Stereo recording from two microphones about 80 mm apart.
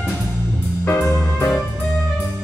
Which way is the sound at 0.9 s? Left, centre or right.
Left.